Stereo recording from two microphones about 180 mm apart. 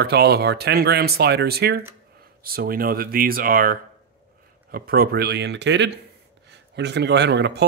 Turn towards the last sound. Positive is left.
turn(degrees=-70)  # may be behind; listen again after turning